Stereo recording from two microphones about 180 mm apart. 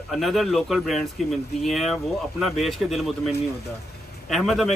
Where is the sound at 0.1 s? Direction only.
Centre (ahead or behind).